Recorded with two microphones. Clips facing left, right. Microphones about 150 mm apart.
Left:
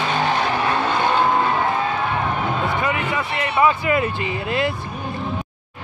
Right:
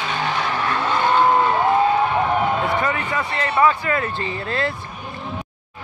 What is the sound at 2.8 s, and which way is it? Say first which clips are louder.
Speech: even; 15° left (ahead or behind).